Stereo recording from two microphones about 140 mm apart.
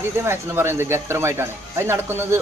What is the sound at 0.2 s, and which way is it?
Speech, 20° right (ahead or behind).